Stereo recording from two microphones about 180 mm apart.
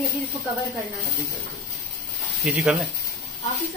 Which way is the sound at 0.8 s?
10° right (ahead or behind).